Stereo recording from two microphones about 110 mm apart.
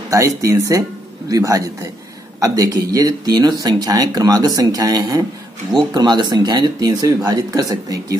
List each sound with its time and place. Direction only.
0.1 s speech: 30° right (ahead or behind)